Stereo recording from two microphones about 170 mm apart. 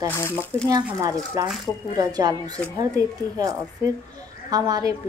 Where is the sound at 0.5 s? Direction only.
15° right (ahead or behind).